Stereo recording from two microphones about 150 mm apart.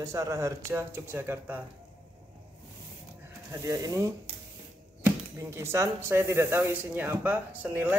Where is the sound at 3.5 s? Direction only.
20° right (ahead or behind).